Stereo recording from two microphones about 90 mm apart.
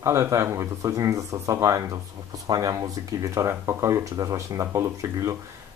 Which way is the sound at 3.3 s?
30° right (ahead or behind).